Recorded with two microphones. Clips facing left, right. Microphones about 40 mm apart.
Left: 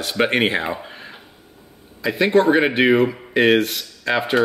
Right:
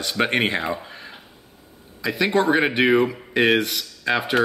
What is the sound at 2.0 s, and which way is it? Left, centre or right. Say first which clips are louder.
Speech: left 4 dB; centre.